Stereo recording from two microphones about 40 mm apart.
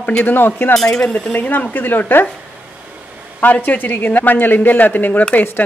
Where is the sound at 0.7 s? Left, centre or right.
Centre.